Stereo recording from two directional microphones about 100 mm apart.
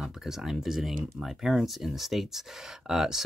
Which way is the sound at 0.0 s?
5° right (ahead or behind).